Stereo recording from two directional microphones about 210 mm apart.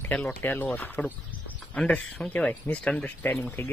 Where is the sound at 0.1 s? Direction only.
5° left (ahead or behind).